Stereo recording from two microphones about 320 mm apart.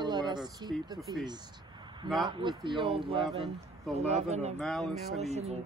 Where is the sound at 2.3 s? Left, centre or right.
Centre.